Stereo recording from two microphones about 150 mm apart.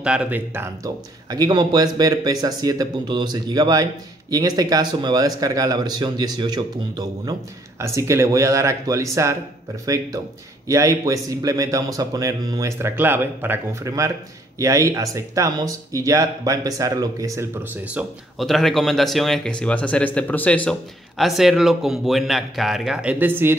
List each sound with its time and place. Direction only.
0.0 s speech: 5° right (ahead or behind)
1.3 s speech: 25° right (ahead or behind)
10.7 s speech: 20° right (ahead or behind)
17.8 s speech: 5° right (ahead or behind)
21.2 s speech: centre (ahead or behind)